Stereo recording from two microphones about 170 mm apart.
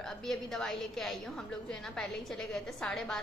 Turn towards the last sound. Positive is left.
turn(degrees=5)  # may be behind; listen again after turning